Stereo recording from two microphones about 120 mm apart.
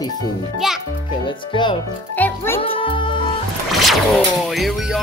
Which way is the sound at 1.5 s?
45° left (ahead or behind).